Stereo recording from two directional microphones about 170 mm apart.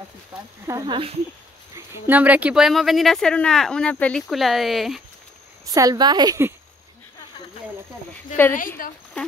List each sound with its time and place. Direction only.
0.3 s a woman's voice: 20° right (ahead or behind); by 5.0 s centre (ahead or behind)
5.7 s a woman's voice: 20° right (ahead or behind)
8.5 s a woman's voice: 55° left (ahead or behind)